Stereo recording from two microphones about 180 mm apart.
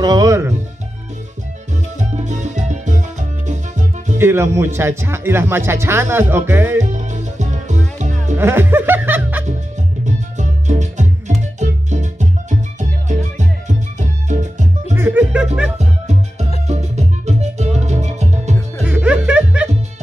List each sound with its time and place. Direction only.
0.0 s speech: 20° right (ahead or behind)
2.0 s music: 40° right (ahead or behind)
4.2 s speech: 15° right (ahead or behind)
6.8 s music: 40° right (ahead or behind)
8.4 s music: 10° right (ahead or behind)
10.0 s music: 40° right (ahead or behind)
15.0 s music: 10° right (ahead or behind)
15.8 s music: 40° right (ahead or behind)
18.9 s music: 5° right (ahead or behind)